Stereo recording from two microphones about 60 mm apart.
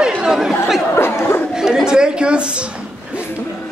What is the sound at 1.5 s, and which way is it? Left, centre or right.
Chatter, centre.